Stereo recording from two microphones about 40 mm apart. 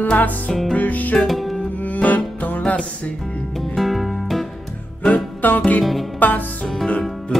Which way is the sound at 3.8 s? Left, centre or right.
Centre.